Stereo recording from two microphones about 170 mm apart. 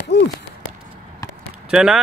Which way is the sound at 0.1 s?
80° left.